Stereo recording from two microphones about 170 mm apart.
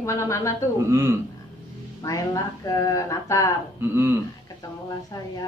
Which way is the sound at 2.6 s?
20° left (ahead or behind).